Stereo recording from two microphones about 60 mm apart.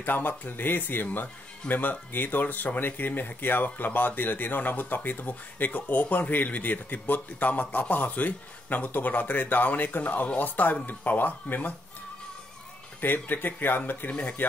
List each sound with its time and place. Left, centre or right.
0.0 s speech: left
13.0 s speech: left